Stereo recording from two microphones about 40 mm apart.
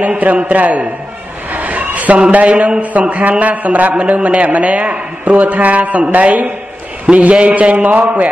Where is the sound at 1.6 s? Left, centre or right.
Right.